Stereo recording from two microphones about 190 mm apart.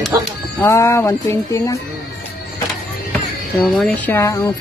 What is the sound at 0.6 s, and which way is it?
Speech, 15° left (ahead or behind).